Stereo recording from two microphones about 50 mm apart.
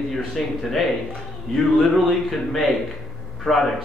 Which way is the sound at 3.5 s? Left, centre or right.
Left.